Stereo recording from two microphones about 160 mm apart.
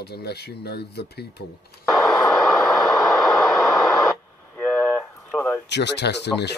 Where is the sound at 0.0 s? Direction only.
90° left.